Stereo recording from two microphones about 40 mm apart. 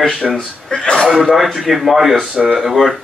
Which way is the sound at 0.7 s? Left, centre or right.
Centre.